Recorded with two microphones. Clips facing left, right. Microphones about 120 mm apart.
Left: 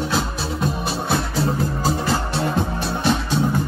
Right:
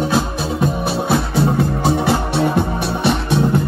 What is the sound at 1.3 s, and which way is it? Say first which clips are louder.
Music: right 5 dB; 65° right (ahead or behind).